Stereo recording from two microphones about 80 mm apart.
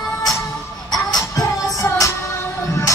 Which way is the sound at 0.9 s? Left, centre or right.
Left.